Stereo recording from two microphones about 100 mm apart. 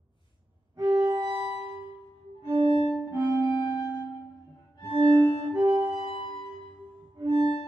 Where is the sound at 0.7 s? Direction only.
40° right (ahead or behind).